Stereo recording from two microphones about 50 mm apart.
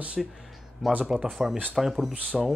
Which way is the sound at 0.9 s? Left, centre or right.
Right.